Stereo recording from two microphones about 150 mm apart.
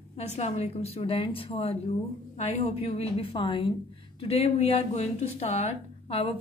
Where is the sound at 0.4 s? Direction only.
45° left (ahead or behind).